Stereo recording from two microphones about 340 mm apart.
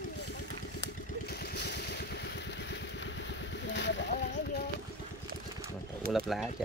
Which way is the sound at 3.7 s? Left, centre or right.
Left.